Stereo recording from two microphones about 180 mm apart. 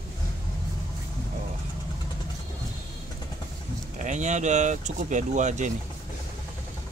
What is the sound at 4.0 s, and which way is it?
Speech, 40° right (ahead or behind).